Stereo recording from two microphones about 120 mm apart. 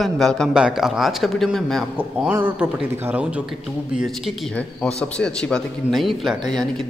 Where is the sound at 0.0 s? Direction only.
5° left (ahead or behind).